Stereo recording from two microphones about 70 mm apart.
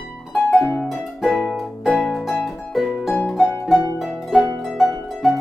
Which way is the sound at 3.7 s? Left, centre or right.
Centre.